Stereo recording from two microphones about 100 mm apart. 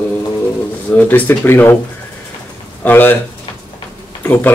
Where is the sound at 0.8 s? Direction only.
15° left (ahead or behind).